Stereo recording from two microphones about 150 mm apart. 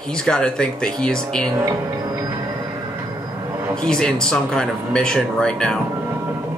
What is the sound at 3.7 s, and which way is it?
Speech, 5° left (ahead or behind).